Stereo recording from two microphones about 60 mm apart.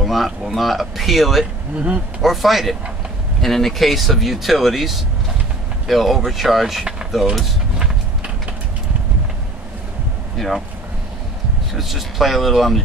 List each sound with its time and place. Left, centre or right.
0.0 s speech: centre
1.8 s speech: right
2.2 s speech: centre
10.3 s speech: centre
11.7 s speech: centre